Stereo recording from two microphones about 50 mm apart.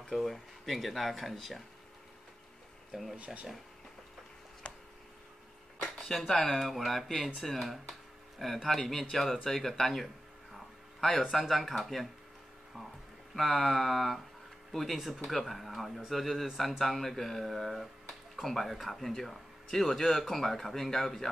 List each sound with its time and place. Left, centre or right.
0.1 s speech: centre
2.9 s speech: centre
4.6 s a sound: left
5.9 s speech: centre
8.4 s speech: centre
13.3 s speech: centre